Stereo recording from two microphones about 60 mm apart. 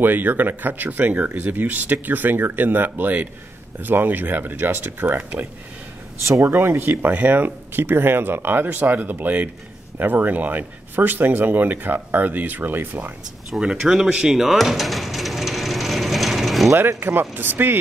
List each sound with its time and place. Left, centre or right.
0.0 s speech: right
13.6 s a sound: centre
16.7 s speech: right